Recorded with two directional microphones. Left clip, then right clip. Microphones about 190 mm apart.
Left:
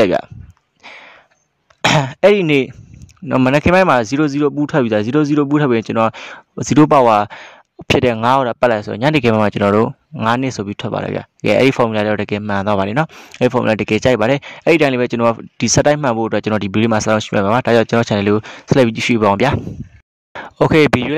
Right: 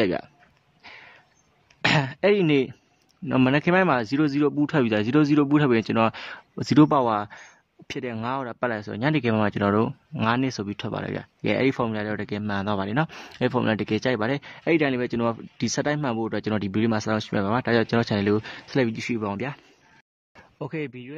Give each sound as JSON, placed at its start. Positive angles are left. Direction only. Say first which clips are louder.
{"t": 0.0, "sound": "speech", "louder": "left 11 dB", "side_deg": 40}
{"t": 0.8, "sound": "sniff", "louder": "left 9 dB", "side_deg": 40}
{"t": 1.8, "sound": "throat clearing", "louder": "left 9 dB", "side_deg": 40}
{"t": 3.4, "sound": "speech", "louder": "left 10 dB", "side_deg": 40}